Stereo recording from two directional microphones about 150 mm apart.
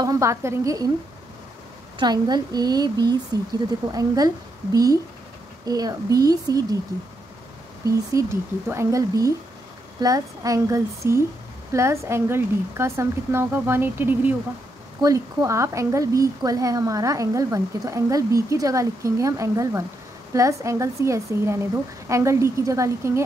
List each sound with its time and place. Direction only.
0.0 s a woman's voice: 20° right (ahead or behind)
2.0 s a woman's voice: 30° right (ahead or behind)
5.7 s a woman's voice: 25° right (ahead or behind)
7.8 s a woman's voice: 20° right (ahead or behind)